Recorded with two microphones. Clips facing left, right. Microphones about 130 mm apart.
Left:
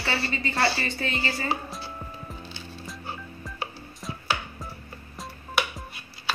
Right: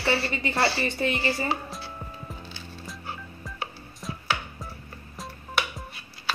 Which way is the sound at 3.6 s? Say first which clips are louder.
Left 1 dB; centre (ahead or behind).